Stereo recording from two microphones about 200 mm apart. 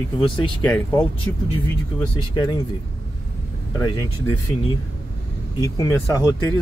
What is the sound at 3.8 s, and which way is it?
Speech, 15° left (ahead or behind).